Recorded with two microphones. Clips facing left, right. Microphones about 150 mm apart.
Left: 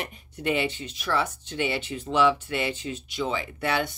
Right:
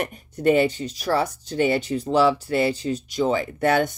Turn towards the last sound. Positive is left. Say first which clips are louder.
# right 7 dB
turn(degrees=-45)  # may be behind; listen again after turning